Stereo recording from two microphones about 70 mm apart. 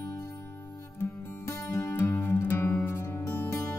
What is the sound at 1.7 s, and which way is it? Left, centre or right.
Music, left.